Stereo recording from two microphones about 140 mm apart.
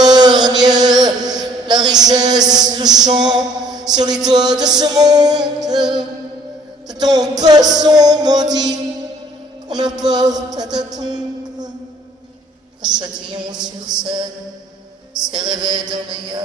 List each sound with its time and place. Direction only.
0.0 s a sound: 30° right (ahead or behind)
3.1 s music: 30° right (ahead or behind)
6.9 s music: 30° right (ahead or behind)
9.7 s a man's voice: 30° right (ahead or behind)
12.8 s a woman's voice: 30° right (ahead or behind)
15.9 s a woman's voice: 30° right (ahead or behind)